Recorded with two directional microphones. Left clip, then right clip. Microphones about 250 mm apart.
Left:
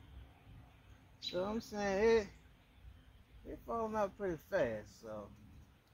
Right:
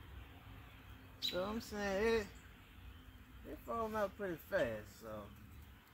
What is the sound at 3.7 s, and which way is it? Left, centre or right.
Speech, centre.